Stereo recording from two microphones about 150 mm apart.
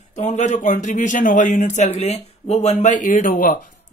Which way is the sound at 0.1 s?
55° left (ahead or behind).